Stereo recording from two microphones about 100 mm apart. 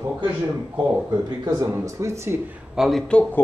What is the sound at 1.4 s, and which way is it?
Speech, 35° right (ahead or behind).